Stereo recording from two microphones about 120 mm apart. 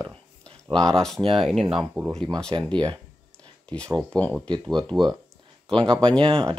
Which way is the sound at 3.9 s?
10° left (ahead or behind).